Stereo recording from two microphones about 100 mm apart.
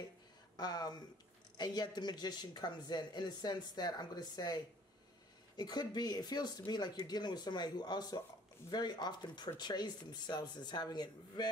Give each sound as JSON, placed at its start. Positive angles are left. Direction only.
{"t": 0.6, "sound": "speech", "side_deg": 45}